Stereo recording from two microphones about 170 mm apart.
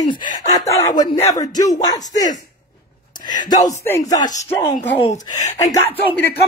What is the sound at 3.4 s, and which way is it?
Speech, 25° left (ahead or behind).